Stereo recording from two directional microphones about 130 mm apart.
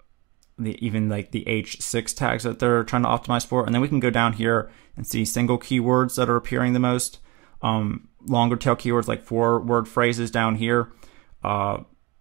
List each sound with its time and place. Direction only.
0.6 s speech: 10° right (ahead or behind)